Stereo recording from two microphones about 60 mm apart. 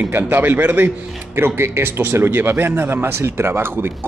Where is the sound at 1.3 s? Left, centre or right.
Right.